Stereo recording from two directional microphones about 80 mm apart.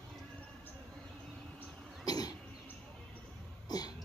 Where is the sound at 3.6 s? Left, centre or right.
Left.